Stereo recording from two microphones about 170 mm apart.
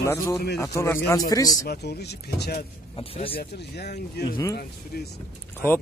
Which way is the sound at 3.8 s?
70° left (ahead or behind).